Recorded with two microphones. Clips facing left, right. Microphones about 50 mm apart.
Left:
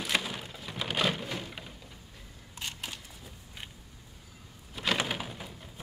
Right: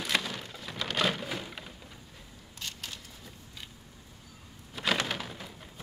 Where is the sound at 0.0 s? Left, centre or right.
Centre.